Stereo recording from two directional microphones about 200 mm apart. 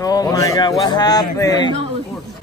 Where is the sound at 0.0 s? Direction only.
20° left (ahead or behind).